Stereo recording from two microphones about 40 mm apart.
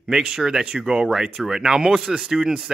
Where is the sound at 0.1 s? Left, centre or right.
Centre.